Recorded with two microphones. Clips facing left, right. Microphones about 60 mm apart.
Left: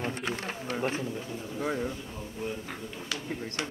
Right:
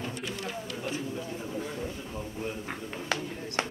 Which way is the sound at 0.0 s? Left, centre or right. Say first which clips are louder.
Left 3 dB; left.